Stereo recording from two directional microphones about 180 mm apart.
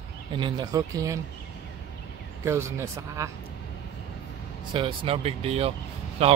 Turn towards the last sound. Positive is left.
turn(degrees=-35)  # may be behind; listen again after turning